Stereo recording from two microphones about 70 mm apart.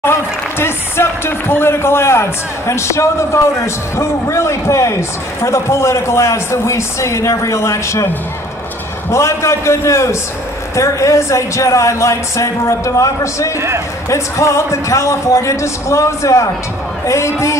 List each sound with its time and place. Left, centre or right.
0.0 s a man's voice: left
9.1 s a man's voice: left